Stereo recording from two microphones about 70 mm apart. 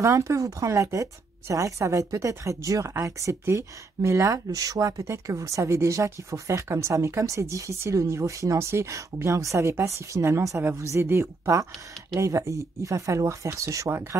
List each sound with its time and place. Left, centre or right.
0.0 s speech: right